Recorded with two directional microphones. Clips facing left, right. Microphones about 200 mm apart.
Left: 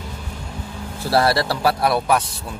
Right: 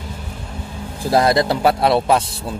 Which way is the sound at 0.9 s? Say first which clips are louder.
Right 3 dB; 15° right (ahead or behind).